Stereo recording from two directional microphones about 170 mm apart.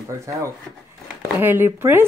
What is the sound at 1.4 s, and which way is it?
Speech, 15° right (ahead or behind).